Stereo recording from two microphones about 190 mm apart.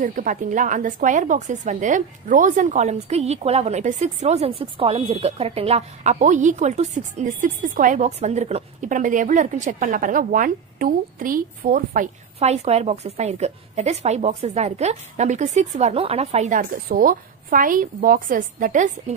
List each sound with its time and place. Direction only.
0.0 s a woman's voice: 45° right (ahead or behind)